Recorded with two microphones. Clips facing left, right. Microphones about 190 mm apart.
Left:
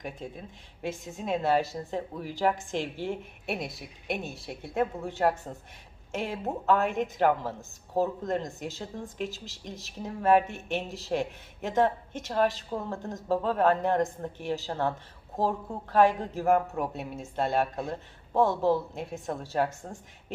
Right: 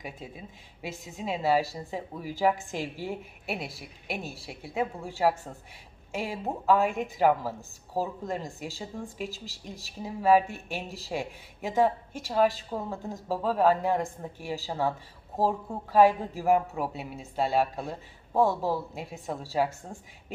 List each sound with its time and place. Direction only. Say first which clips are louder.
0.0 s a woman's voice: left 2 dB; 5° right (ahead or behind)